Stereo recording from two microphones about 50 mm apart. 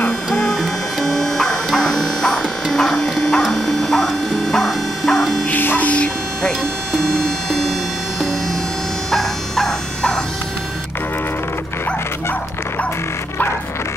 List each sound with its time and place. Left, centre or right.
0.3 s music: centre
5.5 s music: left
7.2 s music: centre
9.1 s a sound: centre